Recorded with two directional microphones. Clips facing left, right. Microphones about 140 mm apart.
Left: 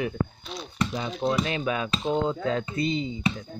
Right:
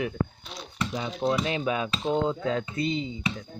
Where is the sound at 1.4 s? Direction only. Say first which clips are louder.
Even; 20° right (ahead or behind).